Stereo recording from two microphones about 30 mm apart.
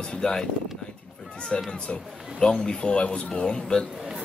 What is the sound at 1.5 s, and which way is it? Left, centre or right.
A man's voice, left.